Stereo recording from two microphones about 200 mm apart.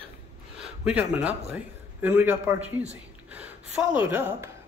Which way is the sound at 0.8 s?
5° right (ahead or behind).